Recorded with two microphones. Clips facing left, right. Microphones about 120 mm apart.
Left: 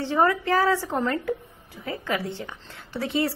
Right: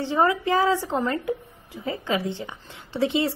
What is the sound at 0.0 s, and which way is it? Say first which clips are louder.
A woman's voice: even; 15° right (ahead or behind).